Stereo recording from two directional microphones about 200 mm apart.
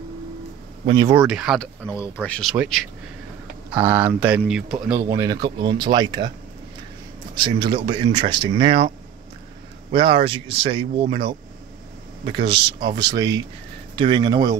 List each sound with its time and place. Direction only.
0.8 s speech: 20° right (ahead or behind)
1.1 s speech: 5° right (ahead or behind)
2.5 s speech: 5° right (ahead or behind)
7.6 s speech: 25° right (ahead or behind)